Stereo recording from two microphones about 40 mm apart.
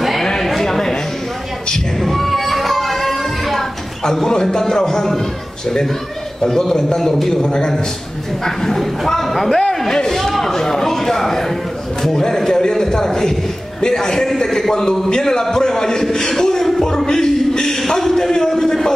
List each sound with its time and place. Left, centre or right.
0.2 s a sound: centre
2.0 s music: centre
4.0 s a man's voice: centre
6.5 s a man's voice: centre
8.5 s a man's voice: centre